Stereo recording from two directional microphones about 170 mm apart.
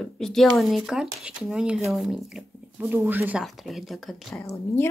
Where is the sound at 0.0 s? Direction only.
Centre (ahead or behind).